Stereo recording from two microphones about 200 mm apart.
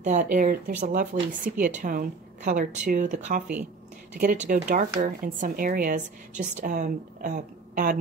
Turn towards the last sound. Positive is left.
turn(degrees=-45)  # may be behind; listen again after turning